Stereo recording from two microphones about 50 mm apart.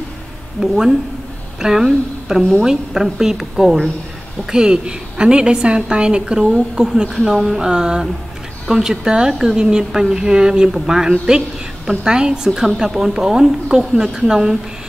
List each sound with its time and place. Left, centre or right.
0.6 s a woman's voice: centre